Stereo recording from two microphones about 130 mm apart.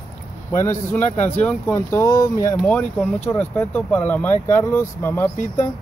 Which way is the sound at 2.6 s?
10° left (ahead or behind).